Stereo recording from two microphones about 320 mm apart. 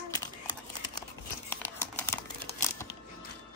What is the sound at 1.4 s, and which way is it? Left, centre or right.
Crumpling, centre.